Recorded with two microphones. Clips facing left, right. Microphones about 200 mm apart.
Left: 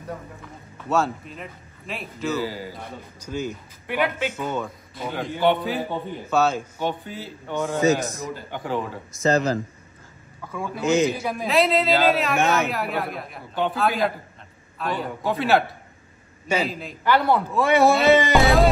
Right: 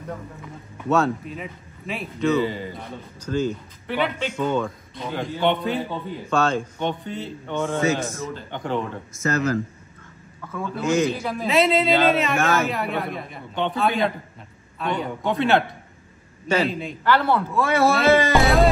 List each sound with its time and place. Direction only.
0.8 s a man's voice: centre (ahead or behind)
5.9 s a man's voice: 20° left (ahead or behind)
6.3 s a man's voice: 5° left (ahead or behind)
9.2 s speech: 35° left (ahead or behind)
10.5 s a man's voice: 15° left (ahead or behind)
10.8 s a man's voice: 25° left (ahead or behind)
11.1 s a man's voice: 10° left (ahead or behind)
17.0 s a man's voice: 15° left (ahead or behind)
18.3 s speech: centre (ahead or behind)